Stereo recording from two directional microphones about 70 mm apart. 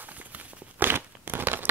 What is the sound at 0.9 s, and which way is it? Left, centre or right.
Crunch, right.